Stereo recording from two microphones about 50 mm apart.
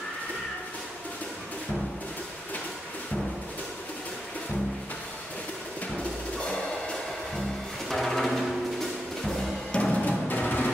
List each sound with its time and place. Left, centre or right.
7.9 s music: centre
9.7 s music: centre
10.0 s music: left